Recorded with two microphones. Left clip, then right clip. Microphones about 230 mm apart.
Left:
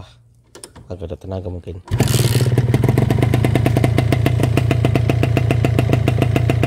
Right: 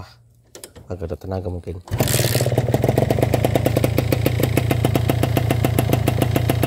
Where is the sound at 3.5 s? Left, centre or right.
Left.